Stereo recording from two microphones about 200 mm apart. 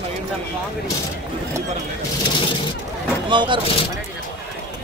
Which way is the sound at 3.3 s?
25° right (ahead or behind).